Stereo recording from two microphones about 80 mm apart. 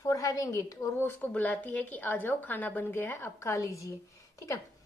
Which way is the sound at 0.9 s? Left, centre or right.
Left.